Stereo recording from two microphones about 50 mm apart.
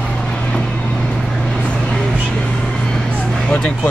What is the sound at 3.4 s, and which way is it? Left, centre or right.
Speech, centre.